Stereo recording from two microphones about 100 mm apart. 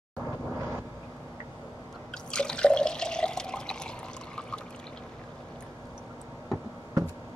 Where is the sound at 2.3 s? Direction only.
10° left (ahead or behind).